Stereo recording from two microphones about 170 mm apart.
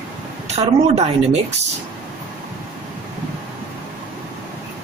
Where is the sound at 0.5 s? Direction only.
40° right (ahead or behind).